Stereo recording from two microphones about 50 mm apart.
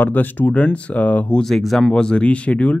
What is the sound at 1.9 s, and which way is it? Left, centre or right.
Speech, centre.